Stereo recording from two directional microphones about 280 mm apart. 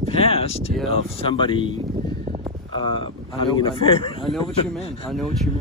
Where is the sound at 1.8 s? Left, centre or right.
Right.